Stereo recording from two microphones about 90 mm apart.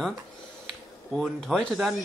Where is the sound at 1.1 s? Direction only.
Centre (ahead or behind).